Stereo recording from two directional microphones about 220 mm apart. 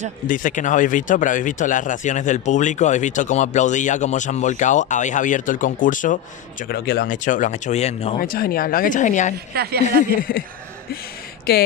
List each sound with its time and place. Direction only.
0.3 s speech: 35° left (ahead or behind)
8.3 s speech: 40° left (ahead or behind)
9.5 s speech: 45° right (ahead or behind)
10.3 s speech: 40° left (ahead or behind)
11.5 s speech: 45° left (ahead or behind)